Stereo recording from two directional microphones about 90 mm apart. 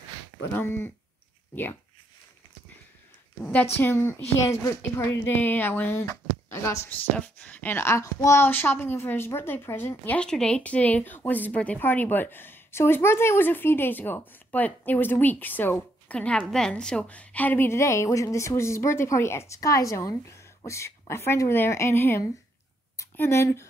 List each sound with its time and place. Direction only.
0.5 s speech: 25° left (ahead or behind)
3.4 s speech: 20° left (ahead or behind)
5.2 s a woman's voice: 20° left (ahead or behind)
6.9 s speech: 15° left (ahead or behind)
10.1 s a woman's voice: 10° left (ahead or behind); by 23.7 s 30° left (ahead or behind)